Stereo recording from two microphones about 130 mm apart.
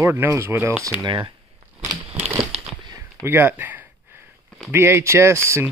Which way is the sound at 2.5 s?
55° right (ahead or behind).